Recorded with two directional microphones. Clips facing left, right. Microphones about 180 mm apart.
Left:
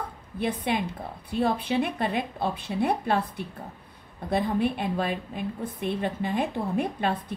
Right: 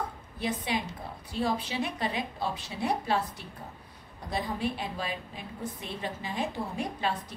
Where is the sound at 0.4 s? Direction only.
55° left (ahead or behind).